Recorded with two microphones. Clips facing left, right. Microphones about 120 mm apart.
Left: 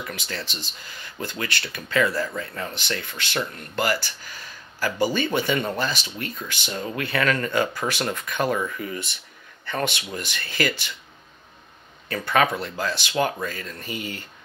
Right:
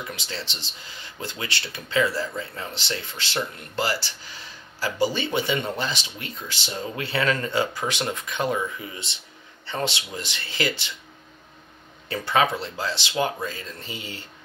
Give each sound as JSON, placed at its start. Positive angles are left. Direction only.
{"t": 0.0, "sound": "speech", "side_deg": -25}
{"t": 4.2, "sound": "a sound", "side_deg": -25}
{"t": 5.3, "sound": "speech", "side_deg": -20}
{"t": 12.1, "sound": "speech", "side_deg": -20}